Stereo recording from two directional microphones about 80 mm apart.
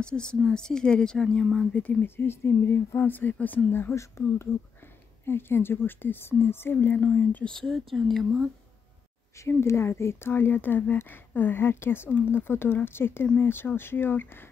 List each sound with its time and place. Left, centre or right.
0.0 s speech: centre
1.7 s speech: centre
7.5 s speech: centre
9.4 s speech: left